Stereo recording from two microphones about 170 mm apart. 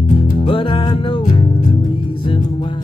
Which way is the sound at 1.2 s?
40° left (ahead or behind).